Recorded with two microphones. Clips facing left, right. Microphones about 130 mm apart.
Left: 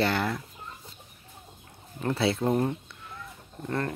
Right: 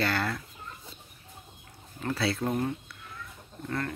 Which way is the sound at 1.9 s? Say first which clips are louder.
Left 3 dB; 25° left (ahead or behind).